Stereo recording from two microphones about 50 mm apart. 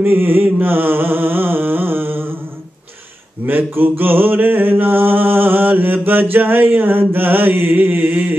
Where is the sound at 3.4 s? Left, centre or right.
Right.